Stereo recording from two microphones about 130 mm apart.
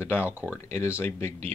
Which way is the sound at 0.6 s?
20° left (ahead or behind).